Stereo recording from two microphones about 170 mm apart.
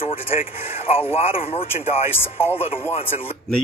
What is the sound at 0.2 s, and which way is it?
Speech, 35° left (ahead or behind).